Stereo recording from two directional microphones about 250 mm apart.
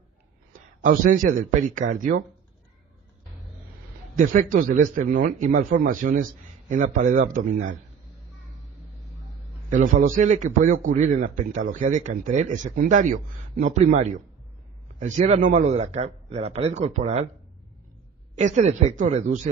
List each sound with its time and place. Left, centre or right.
0.5 s a man's voice: right
4.2 s a man's voice: right
9.7 s a man's voice: right
18.4 s a man's voice: right